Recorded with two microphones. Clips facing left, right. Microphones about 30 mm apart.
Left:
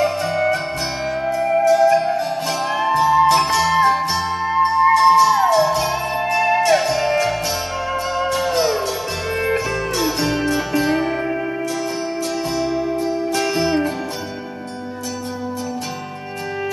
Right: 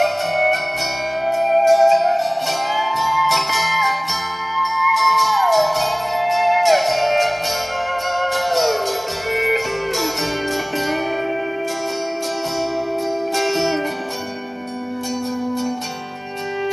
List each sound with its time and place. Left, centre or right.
0.0 s music: right
1.4 s music: right
13.4 s music: centre